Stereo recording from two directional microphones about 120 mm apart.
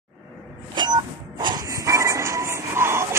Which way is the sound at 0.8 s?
40° right (ahead or behind).